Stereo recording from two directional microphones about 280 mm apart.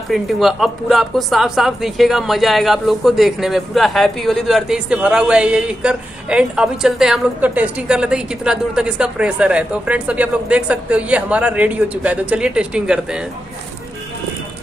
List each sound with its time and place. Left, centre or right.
0.1 s a woman's voice: centre